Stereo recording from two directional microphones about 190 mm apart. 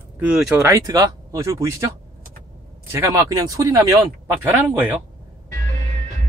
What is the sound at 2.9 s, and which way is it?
Speech, 15° right (ahead or behind).